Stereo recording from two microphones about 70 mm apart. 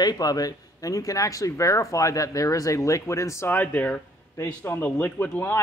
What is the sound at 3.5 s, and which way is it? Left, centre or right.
A man's voice, left.